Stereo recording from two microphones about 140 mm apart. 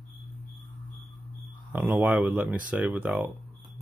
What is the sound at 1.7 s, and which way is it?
Speech, 10° right (ahead or behind).